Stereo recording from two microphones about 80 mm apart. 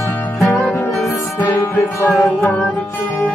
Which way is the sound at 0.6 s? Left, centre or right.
Left.